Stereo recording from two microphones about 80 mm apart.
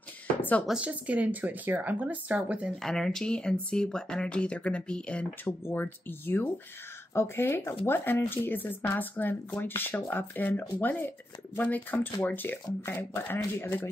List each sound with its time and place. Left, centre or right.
0.4 s a sound: left
0.7 s speech: centre
2.8 s speech: centre
5.4 s speech: left